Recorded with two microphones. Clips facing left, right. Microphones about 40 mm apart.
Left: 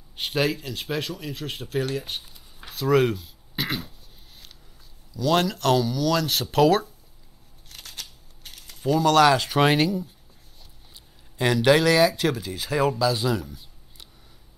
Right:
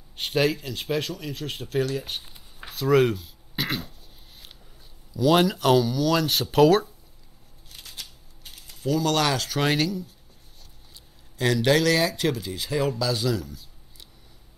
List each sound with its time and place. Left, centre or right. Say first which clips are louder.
0.1 s speech: right 1 dB; centre
5.1 s speech: right 2 dB; centre
7.7 s scissors: left 1 dB; left
9.0 s speech: left 9 dB; centre
11.3 s a man's voice: left 2 dB; left
13.2 s speech: left 1 dB; left